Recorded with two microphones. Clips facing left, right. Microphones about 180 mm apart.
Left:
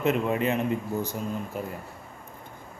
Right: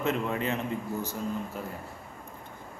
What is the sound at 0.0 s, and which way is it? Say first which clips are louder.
Speech: left 4 dB; 15° left (ahead or behind).